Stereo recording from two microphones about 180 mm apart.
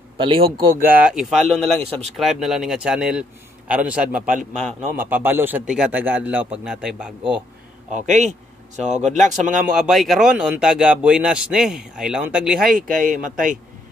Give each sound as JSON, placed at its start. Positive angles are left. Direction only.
{"t": 0.2, "sound": "speech", "side_deg": -30}
{"t": 0.7, "sound": "speech", "side_deg": -10}
{"t": 1.8, "sound": "speech", "side_deg": -35}
{"t": 2.1, "sound": "speech", "side_deg": 0}
{"t": 4.9, "sound": "a man's voice", "side_deg": -10}
{"t": 7.9, "sound": "speech", "side_deg": -45}
{"t": 9.8, "sound": "speech", "side_deg": 0}
{"t": 12.6, "sound": "speech", "side_deg": -50}